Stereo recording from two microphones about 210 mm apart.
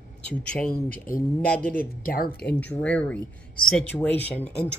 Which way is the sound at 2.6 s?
5° left (ahead or behind).